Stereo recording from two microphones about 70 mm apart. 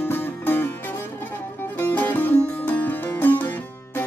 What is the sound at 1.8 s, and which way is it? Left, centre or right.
Music, left.